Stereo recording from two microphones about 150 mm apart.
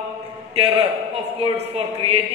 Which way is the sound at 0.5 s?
40° right (ahead or behind).